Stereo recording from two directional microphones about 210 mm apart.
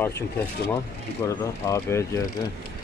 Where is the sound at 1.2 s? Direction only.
15° left (ahead or behind).